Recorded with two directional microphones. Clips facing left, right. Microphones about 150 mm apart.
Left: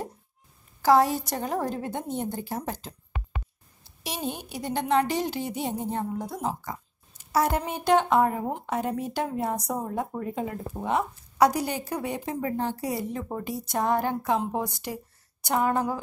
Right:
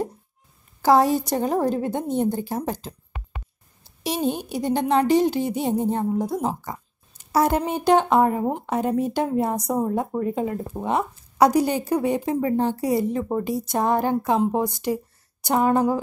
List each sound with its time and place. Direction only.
0.8 s speech: 25° right (ahead or behind)
4.0 s speech: 30° right (ahead or behind)